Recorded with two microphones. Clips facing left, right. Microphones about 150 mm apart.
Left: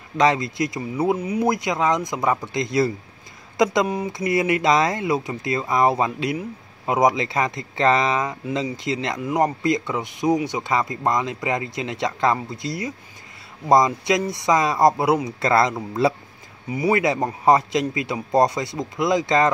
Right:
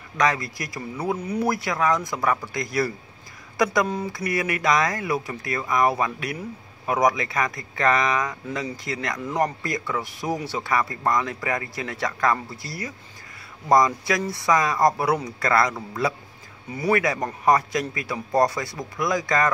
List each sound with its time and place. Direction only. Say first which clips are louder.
0.2 s speech: left 5 dB; 25° left (ahead or behind)
16.7 s speech: left 2 dB; 10° left (ahead or behind)
17.0 s speech: left 3 dB; 25° left (ahead or behind)